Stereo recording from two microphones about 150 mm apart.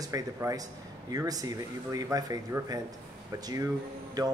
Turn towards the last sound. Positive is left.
turn(degrees=-25)  # may be behind; listen again after turning